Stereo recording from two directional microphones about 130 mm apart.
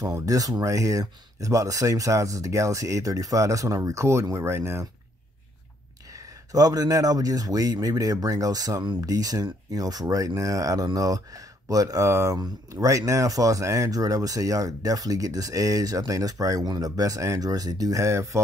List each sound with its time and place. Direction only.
0.0 s speech: 25° right (ahead or behind)
6.5 s speech: 30° right (ahead or behind)